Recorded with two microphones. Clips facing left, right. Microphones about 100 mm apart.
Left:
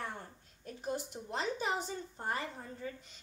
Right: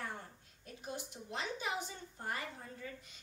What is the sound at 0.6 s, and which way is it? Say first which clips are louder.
A woman's voice: left 7 dB; 40° left (ahead or behind).